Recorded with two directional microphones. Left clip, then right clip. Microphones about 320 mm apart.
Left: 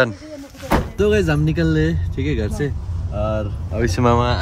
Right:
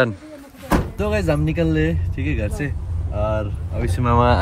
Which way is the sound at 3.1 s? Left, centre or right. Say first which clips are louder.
Even; centre.